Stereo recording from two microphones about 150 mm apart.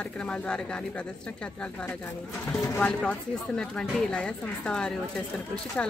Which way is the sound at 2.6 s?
15° left (ahead or behind).